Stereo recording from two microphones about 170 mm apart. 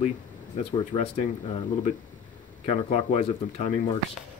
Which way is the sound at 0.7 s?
35° left (ahead or behind).